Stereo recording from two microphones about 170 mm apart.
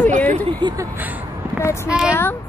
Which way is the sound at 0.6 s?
25° right (ahead or behind).